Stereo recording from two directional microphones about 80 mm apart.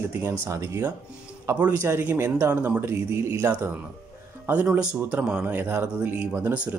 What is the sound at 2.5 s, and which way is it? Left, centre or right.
Speech, centre.